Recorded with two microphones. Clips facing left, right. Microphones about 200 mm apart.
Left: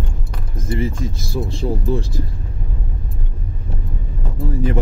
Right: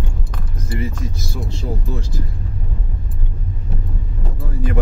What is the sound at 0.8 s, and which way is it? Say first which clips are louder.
Speech: left 3 dB; 25° left (ahead or behind).